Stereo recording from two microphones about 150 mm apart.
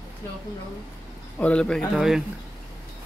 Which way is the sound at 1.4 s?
5° left (ahead or behind).